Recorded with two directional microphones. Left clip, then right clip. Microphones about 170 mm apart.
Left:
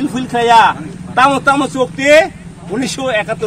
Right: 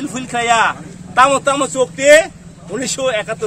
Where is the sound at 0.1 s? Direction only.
25° right (ahead or behind).